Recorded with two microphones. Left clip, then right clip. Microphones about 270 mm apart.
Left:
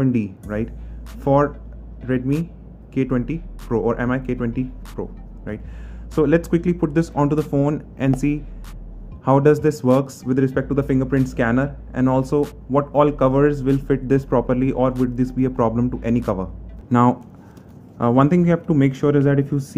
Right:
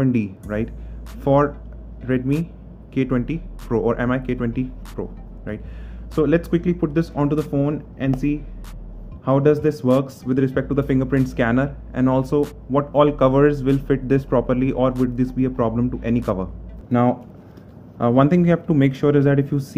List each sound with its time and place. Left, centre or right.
0.0 s speech: centre
9.2 s speech: centre
16.9 s speech: centre